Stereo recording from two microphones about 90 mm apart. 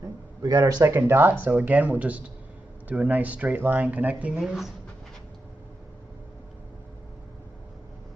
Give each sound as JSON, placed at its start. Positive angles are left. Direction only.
{"t": 0.4, "sound": "speech", "side_deg": -50}
{"t": 0.9, "sound": "speech", "side_deg": -25}
{"t": 4.4, "sound": "speech", "side_deg": -5}